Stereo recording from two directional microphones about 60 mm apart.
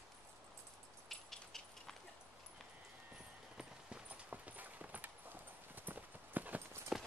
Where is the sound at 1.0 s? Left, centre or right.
Centre.